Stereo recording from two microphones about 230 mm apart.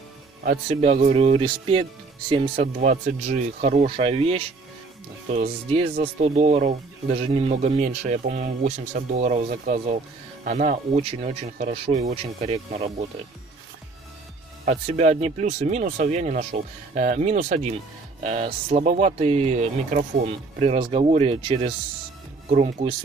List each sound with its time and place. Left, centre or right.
0.5 s speech: right
14.6 s speech: right